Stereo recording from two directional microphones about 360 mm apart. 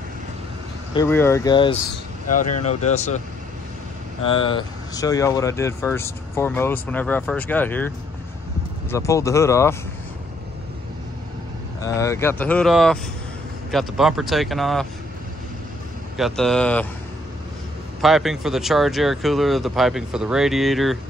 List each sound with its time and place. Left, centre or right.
0.9 s speech: centre
4.2 s speech: centre
8.9 s speech: centre
11.8 s speech: centre
16.2 s speech: centre
18.0 s speech: centre